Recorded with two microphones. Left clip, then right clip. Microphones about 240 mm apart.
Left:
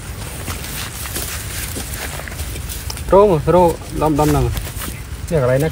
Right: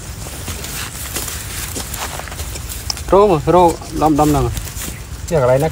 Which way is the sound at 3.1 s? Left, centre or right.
Right.